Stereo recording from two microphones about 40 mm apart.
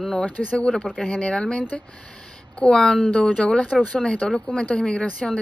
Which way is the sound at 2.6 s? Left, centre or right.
Left.